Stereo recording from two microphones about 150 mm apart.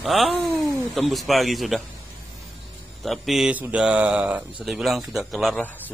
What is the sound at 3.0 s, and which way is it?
A man's voice, centre (ahead or behind).